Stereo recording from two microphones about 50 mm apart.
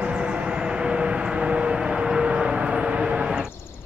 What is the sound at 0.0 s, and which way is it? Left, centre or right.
Vehicle, right.